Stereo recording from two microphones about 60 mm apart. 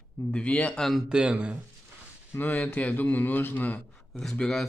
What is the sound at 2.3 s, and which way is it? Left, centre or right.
A man's voice, left.